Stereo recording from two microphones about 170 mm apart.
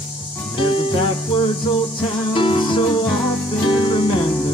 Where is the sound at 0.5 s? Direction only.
30° left (ahead or behind).